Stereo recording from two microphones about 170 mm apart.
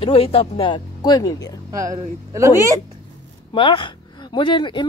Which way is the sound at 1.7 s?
20° right (ahead or behind).